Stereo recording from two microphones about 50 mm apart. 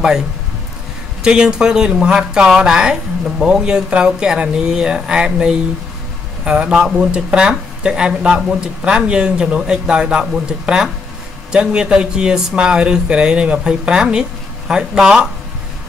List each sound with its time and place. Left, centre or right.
1.2 s speech: centre